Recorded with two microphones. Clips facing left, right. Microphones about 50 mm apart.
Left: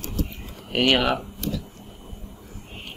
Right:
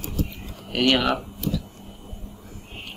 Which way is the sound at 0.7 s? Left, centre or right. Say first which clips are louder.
Even; centre.